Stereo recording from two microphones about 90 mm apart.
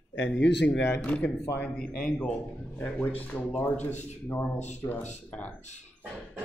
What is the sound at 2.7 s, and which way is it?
Speech, 20° left (ahead or behind).